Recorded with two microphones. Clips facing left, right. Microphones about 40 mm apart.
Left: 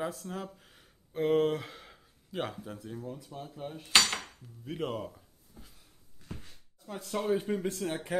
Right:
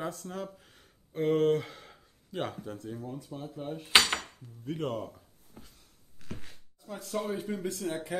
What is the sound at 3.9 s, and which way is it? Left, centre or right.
Cutlery, centre.